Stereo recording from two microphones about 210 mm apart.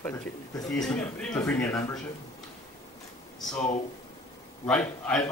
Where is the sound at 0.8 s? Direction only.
5° left (ahead or behind).